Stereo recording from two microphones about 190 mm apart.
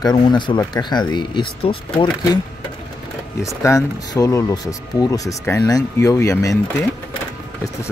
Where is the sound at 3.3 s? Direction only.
15° left (ahead or behind).